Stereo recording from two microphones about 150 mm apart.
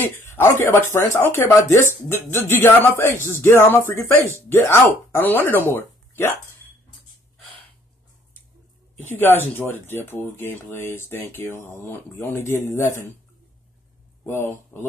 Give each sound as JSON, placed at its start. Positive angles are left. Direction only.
{"t": 0.0, "sound": "speech", "side_deg": 15}
{"t": 9.0, "sound": "speech", "side_deg": 15}
{"t": 14.2, "sound": "speech", "side_deg": 15}